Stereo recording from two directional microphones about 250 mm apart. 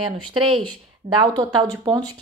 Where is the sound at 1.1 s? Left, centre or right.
Centre.